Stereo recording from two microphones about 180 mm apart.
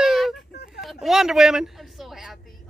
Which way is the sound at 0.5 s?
65° left (ahead or behind).